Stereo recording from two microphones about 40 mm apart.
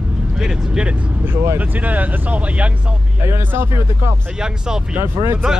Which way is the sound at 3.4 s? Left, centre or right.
Right.